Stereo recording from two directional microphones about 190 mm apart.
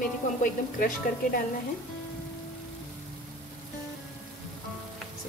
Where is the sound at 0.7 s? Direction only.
45° left (ahead or behind).